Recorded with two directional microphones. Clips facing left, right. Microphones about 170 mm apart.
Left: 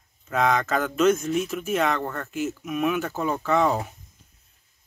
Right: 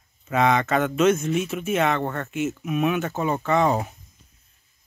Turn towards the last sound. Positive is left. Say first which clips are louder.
# right 1 dB
turn(degrees=0)  # may be behind; listen again after turning